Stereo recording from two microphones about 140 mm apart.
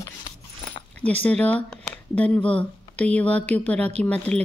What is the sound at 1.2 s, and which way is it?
Speech, 10° left (ahead or behind).